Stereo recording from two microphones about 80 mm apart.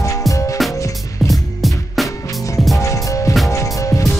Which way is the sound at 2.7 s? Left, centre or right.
Left.